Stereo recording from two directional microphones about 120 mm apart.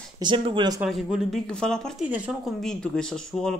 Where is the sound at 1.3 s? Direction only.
5° left (ahead or behind).